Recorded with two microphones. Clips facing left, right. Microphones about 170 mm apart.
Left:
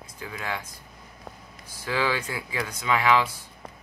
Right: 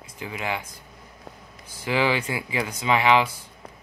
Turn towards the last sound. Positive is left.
turn(degrees=-25)  # may be behind; listen again after turning